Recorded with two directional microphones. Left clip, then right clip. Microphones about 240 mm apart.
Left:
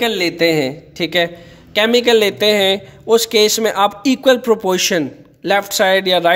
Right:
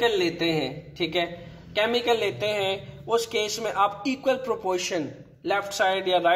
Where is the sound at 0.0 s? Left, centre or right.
Left.